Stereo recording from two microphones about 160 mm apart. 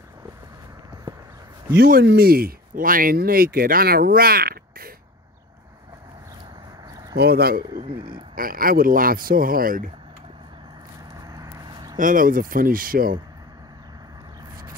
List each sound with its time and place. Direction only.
1.8 s speech: 75° right (ahead or behind)
7.2 s speech: 75° right (ahead or behind)
11.3 s a sound: 20° right (ahead or behind)
12.0 s speech: 60° right (ahead or behind)